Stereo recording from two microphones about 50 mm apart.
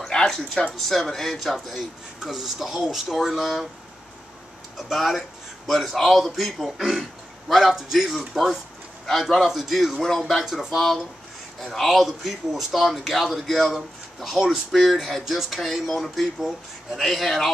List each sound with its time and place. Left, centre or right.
0.1 s speech: centre
0.7 s speech: centre
4.7 s speech: centre
9.0 s speech: centre
10.4 s speech: centre
11.6 s speech: centre